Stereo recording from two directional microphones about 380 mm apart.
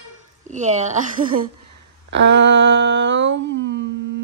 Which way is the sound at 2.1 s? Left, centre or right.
Right.